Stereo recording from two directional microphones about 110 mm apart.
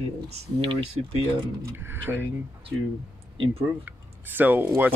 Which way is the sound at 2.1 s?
15° right (ahead or behind).